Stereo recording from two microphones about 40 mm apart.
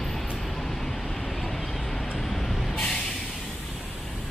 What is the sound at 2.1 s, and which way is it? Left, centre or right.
Vehicle, centre.